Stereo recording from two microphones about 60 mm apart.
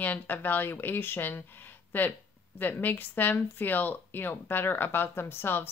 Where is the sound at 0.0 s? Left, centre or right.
Left.